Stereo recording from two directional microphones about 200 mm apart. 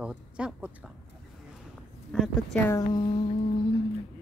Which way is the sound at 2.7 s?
20° left (ahead or behind).